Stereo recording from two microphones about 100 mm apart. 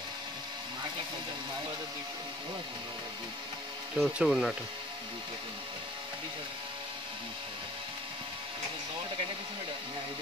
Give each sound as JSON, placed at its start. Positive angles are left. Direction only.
{"t": 3.9, "sound": "speech", "side_deg": -5}